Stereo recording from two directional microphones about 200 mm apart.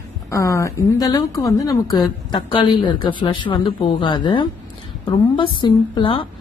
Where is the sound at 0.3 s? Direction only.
15° left (ahead or behind).